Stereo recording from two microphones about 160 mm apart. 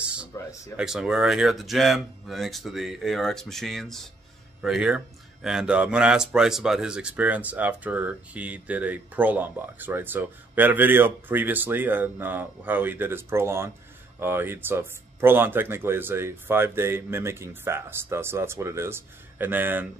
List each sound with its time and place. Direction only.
0.4 s speech: 15° left (ahead or behind)
0.7 s speech: 5° right (ahead or behind)